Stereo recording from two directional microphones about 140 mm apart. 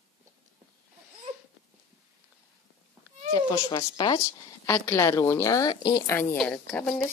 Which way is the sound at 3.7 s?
35° left (ahead or behind).